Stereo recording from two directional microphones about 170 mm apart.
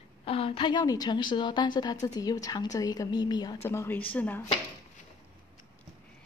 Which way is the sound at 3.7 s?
15° left (ahead or behind).